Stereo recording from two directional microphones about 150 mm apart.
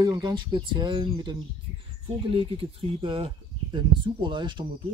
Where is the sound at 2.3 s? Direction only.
35° right (ahead or behind).